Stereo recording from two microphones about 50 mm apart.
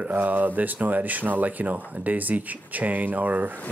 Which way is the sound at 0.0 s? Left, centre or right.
Right.